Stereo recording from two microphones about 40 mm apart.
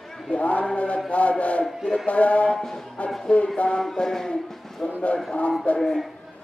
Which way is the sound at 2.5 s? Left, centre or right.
Centre.